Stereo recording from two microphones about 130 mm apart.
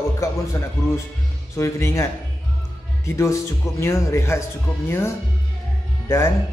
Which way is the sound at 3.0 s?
20° left (ahead or behind).